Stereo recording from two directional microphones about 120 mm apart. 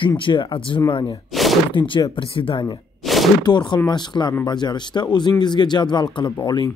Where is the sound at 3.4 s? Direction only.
35° left (ahead or behind).